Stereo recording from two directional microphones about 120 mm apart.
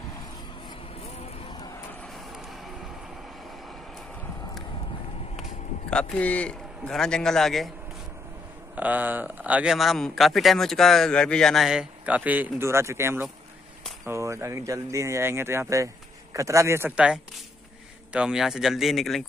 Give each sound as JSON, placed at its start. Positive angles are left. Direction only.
{"t": 2.1, "sound": "vehicle", "side_deg": 0}
{"t": 5.9, "sound": "a man's voice", "side_deg": 10}
{"t": 8.7, "sound": "a man's voice", "side_deg": -15}
{"t": 16.9, "sound": "a man's voice", "side_deg": -10}